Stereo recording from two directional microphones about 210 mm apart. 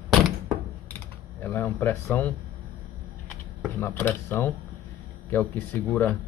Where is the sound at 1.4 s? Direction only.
10° left (ahead or behind).